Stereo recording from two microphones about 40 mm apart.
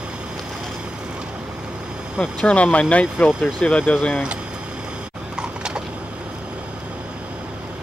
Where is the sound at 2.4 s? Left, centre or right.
Left.